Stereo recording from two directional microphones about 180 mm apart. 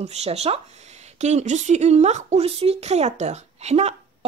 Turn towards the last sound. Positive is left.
turn(degrees=-35)  # may be behind; listen again after turning